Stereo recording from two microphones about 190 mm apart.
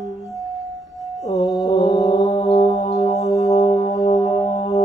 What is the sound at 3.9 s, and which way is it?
Music, 20° left (ahead or behind).